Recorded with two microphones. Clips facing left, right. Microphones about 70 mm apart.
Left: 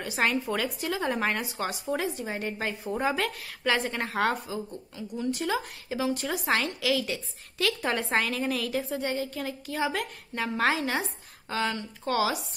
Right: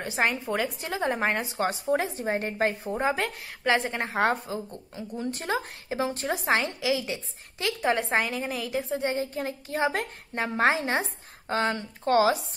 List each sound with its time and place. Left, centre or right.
0.0 s a woman's voice: right